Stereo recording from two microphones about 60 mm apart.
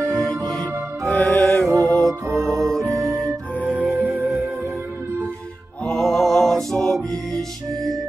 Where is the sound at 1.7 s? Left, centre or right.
Right.